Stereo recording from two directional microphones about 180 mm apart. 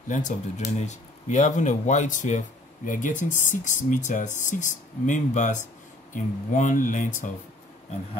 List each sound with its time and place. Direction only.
0.1 s speech: 40° left (ahead or behind)